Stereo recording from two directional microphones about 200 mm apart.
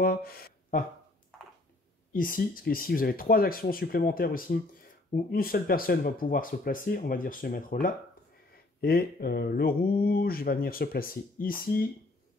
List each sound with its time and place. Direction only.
0.0 s speech: 50° left (ahead or behind)
2.1 s speech: 45° left (ahead or behind)